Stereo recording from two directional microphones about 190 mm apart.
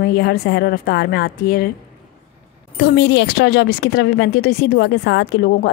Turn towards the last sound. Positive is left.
turn(degrees=60)  # may be behind; listen again after turning